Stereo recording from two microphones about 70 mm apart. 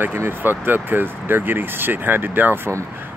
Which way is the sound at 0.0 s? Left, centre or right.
Right.